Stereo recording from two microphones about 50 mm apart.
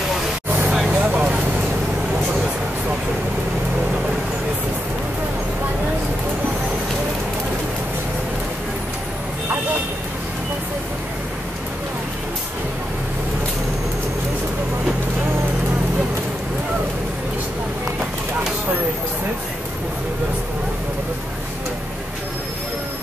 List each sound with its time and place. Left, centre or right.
0.8 s vehicle: right